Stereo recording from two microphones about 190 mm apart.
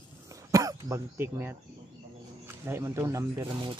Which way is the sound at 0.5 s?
15° right (ahead or behind).